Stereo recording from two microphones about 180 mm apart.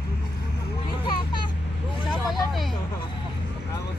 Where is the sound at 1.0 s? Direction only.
25° left (ahead or behind).